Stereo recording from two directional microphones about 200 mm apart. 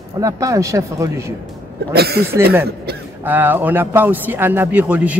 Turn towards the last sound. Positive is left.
turn(degrees=-10)  # may be behind; listen again after turning